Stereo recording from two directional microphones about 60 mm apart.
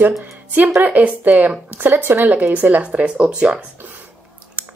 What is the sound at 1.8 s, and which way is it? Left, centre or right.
Speech, right.